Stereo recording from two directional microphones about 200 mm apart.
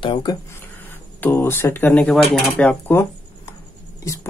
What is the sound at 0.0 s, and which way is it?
Speech, 25° left (ahead or behind).